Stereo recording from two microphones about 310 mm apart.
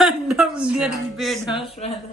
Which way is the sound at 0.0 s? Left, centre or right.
Centre.